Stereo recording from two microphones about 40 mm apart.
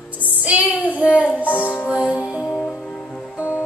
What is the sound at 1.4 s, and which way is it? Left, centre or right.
Music, left.